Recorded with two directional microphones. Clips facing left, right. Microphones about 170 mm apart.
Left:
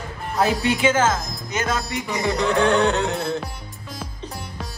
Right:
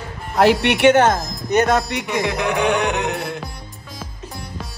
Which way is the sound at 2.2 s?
15° right (ahead or behind).